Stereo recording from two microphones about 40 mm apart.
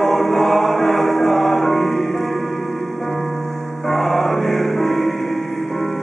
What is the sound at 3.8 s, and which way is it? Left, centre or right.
Music, centre.